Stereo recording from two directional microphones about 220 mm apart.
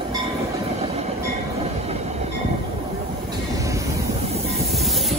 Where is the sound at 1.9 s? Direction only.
30° right (ahead or behind).